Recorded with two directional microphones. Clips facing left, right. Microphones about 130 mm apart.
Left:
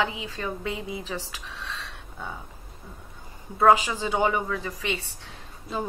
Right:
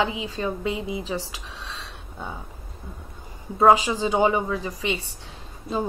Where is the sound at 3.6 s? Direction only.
20° right (ahead or behind).